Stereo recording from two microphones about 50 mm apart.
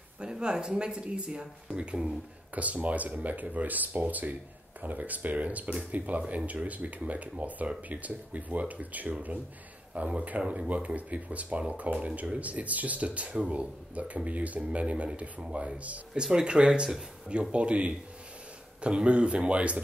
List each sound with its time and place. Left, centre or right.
0.2 s speech: centre
2.5 s speech: right
16.2 s speech: centre